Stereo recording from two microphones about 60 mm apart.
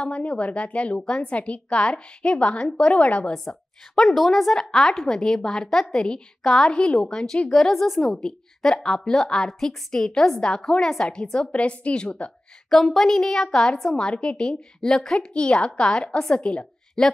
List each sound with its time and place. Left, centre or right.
0.0 s a woman's voice: centre
3.4 s a woman's voice: centre
12.6 s a woman's voice: centre